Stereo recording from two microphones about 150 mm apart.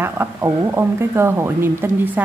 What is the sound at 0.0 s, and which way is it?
Speech, 15° right (ahead or behind).